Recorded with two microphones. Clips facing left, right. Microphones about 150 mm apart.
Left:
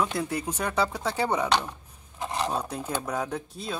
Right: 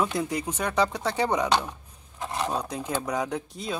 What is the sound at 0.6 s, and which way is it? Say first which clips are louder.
Speech: right 2 dB; 10° left (ahead or behind).